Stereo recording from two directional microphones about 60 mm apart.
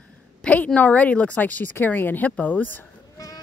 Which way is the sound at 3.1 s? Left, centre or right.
Left.